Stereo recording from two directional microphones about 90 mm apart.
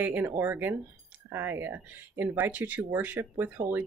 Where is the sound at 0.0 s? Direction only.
20° right (ahead or behind).